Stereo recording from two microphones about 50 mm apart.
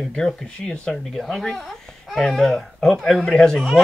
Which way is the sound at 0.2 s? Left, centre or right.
Centre.